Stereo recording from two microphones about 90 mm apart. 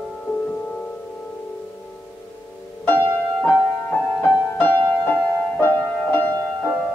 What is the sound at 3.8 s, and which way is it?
Music, 20° left (ahead or behind).